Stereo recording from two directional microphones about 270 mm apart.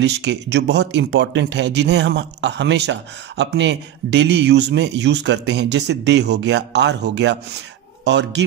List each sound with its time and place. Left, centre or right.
0.0 s speech: right